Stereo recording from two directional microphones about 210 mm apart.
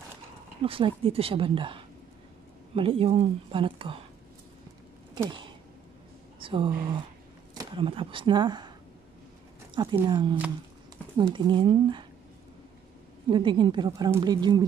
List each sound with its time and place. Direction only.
0.6 s speech: 25° right (ahead or behind)
5.1 s a sound: 20° right (ahead or behind)
6.4 s speech: 25° right (ahead or behind)
10.0 s speech: 20° right (ahead or behind)
13.3 s speech: 20° right (ahead or behind)